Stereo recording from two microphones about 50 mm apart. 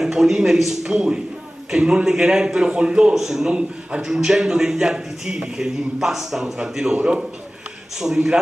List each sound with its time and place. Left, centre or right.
0.0 s a man's voice: centre
3.5 s a man's voice: centre